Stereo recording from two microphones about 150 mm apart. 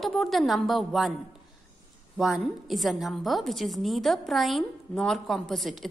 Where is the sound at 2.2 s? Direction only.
5° right (ahead or behind).